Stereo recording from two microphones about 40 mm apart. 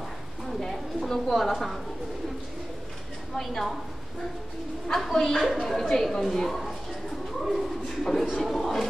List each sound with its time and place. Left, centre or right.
0.5 s a woman's voice: centre
3.3 s a woman's voice: centre
4.9 s speech: centre